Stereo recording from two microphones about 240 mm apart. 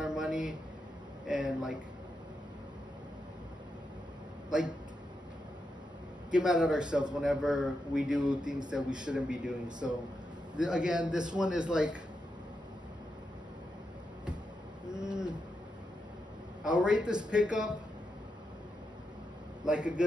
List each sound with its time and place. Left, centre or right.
0.0 s a sound: centre
1.2 s speech: centre
4.5 s a man's voice: centre
6.3 s a man's voice: centre
9.7 s speech: centre
10.6 s a man's voice: centre
14.9 s a sound: centre
16.6 s a man's voice: centre
19.6 s a man's voice: centre